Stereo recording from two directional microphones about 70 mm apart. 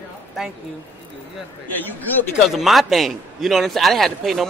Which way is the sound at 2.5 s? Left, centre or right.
Centre.